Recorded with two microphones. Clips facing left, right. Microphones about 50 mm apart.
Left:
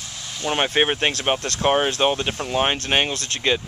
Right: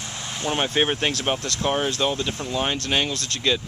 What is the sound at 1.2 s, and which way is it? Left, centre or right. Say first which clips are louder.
Speech: left 2 dB; left.